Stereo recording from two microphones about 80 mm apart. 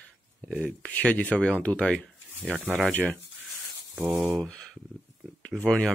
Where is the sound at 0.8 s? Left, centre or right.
Centre.